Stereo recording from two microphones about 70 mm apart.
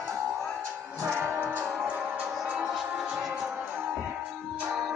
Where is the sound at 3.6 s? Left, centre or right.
Right.